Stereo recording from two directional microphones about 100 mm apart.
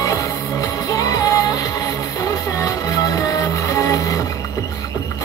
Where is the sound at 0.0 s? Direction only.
35° left (ahead or behind).